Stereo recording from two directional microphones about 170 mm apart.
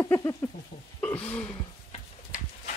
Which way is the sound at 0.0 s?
15° left (ahead or behind).